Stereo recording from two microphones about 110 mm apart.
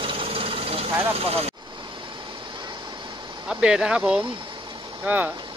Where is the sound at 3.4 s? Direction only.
10° right (ahead or behind).